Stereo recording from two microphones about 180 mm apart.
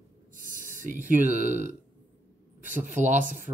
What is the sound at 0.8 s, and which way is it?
Speech, 45° right (ahead or behind).